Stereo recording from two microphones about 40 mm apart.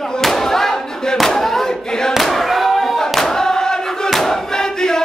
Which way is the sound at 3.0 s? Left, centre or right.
Centre.